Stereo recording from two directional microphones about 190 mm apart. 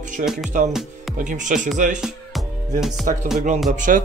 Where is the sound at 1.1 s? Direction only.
40° right (ahead or behind).